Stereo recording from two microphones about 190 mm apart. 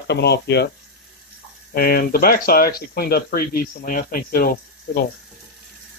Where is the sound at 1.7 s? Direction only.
50° left (ahead or behind).